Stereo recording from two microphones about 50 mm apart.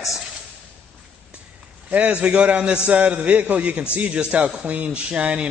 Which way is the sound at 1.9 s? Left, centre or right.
Right.